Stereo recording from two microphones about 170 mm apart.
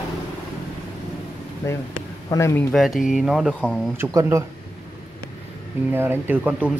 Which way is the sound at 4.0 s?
20° right (ahead or behind).